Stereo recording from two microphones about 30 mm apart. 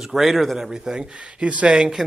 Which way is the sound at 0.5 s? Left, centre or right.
Centre.